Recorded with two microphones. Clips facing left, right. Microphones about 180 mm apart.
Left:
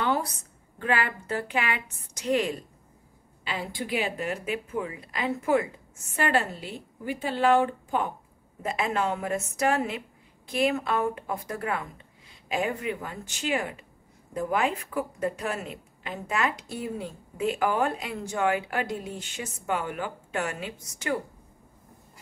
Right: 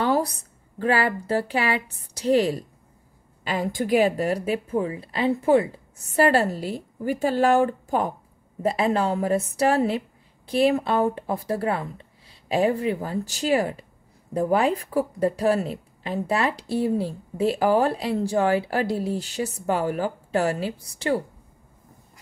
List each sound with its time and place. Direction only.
0.0 s a woman's voice: 35° right (ahead or behind)
3.4 s speech: 45° right (ahead or behind)